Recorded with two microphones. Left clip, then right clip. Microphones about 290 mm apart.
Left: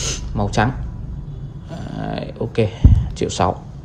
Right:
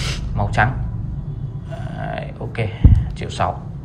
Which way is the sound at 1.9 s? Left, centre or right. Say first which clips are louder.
Left 1 dB; centre.